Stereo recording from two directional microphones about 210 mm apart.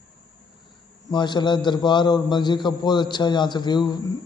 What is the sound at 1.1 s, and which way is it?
A man's voice, 20° left (ahead or behind).